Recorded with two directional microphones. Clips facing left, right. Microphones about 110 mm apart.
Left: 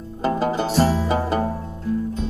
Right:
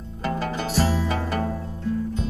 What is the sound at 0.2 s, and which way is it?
Music, 30° left (ahead or behind).